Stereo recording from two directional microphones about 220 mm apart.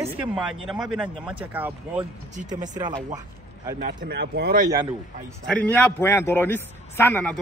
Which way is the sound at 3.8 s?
50° right (ahead or behind).